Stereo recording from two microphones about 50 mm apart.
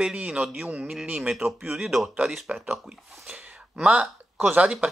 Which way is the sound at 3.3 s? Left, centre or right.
Right.